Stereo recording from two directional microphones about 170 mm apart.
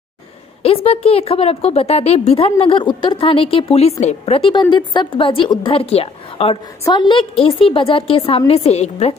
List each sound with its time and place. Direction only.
0.6 s a woman's voice: 35° left (ahead or behind)